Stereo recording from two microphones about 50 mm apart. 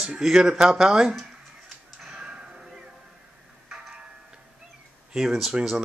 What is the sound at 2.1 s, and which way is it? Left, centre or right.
Arrow, centre.